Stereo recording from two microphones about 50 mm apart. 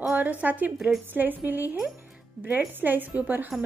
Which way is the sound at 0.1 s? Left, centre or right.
Right.